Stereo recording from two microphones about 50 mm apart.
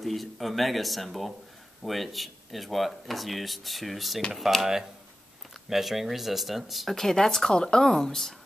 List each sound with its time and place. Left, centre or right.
0.0 s speech: centre